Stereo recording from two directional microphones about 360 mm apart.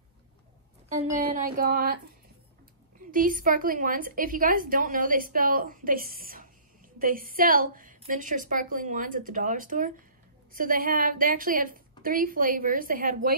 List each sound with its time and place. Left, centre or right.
1.1 s a woman's voice: right
3.1 s a woman's voice: right